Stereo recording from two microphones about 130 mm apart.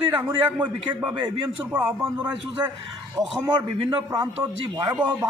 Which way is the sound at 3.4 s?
35° right (ahead or behind).